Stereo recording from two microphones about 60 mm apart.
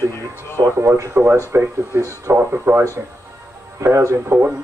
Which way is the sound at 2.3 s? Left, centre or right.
Right.